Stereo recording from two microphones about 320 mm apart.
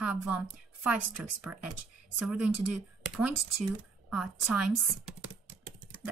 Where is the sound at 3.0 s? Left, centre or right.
Centre.